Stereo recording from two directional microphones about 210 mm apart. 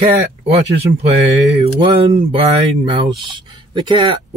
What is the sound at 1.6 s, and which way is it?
Speech, 25° right (ahead or behind).